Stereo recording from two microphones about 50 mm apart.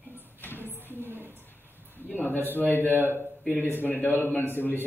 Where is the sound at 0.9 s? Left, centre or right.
Right.